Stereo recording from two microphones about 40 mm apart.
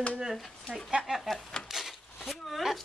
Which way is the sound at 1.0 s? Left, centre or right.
Centre.